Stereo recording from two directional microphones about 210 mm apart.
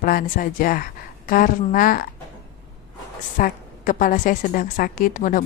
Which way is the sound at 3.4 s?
40° left (ahead or behind).